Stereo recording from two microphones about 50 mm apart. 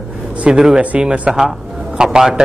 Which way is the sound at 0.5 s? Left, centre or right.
Centre.